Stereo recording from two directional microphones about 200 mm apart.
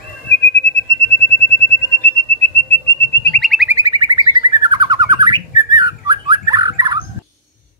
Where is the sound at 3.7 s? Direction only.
20° right (ahead or behind).